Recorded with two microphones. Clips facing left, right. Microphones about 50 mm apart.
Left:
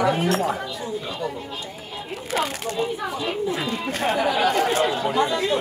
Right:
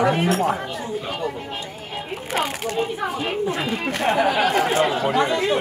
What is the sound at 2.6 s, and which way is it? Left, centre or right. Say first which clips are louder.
Speech: right 2 dB; right.